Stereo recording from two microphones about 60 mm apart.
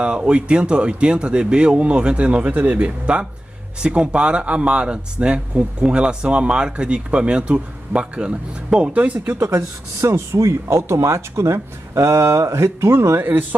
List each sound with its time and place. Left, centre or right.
0.0 s speech: centre
10.0 s speech: right
13.2 s speech: right